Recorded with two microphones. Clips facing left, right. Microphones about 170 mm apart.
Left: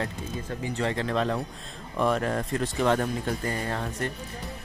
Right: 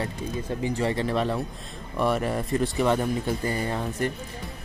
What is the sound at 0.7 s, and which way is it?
Speech, 10° right (ahead or behind).